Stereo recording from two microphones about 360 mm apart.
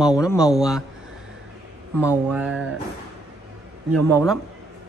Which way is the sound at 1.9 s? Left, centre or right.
Centre.